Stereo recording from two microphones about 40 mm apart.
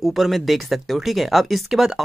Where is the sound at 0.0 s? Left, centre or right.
Centre.